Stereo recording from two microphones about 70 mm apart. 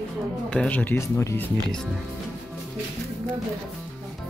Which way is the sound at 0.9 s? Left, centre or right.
Left.